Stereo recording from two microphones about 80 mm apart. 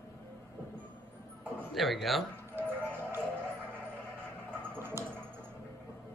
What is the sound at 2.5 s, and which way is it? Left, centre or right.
Music, right.